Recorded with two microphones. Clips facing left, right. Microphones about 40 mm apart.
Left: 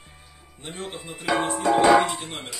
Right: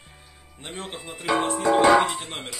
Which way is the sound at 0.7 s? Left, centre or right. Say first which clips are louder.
Even; centre.